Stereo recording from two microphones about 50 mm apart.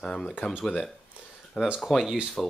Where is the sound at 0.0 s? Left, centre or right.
Centre.